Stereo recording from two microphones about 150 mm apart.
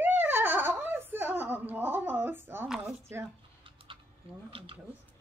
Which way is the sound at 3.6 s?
35° right (ahead or behind).